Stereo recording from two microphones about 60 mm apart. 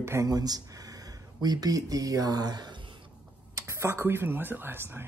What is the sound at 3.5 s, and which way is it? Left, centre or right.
Speech, right.